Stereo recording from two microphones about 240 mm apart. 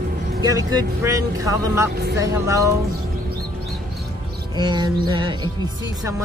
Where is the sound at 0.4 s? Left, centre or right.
Centre.